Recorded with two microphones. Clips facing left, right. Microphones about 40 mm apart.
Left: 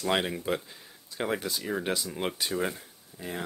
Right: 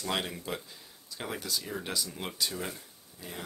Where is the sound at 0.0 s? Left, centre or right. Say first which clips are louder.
Left 6 dB; left.